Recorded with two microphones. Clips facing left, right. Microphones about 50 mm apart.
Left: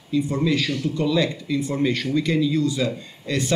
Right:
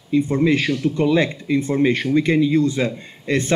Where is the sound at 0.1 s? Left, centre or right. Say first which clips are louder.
Right 4 dB; right.